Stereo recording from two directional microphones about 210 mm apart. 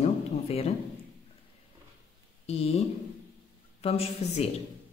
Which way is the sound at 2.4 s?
30° left (ahead or behind).